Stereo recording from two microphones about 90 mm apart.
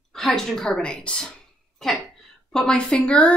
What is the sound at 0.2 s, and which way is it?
Speech, 5° left (ahead or behind).